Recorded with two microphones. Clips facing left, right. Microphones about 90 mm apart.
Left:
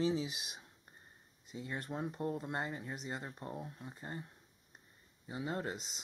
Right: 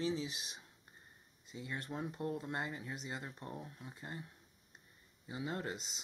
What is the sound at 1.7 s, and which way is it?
Speech, 5° left (ahead or behind).